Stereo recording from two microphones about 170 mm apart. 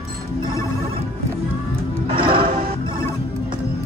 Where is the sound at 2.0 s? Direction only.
30° right (ahead or behind).